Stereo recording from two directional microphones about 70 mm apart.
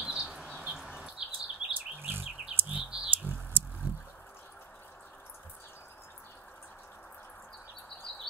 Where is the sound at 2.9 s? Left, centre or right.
Centre.